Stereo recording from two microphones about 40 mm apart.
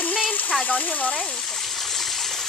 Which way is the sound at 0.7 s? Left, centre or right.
Left.